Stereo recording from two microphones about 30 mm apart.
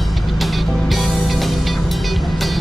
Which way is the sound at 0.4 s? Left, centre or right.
Centre.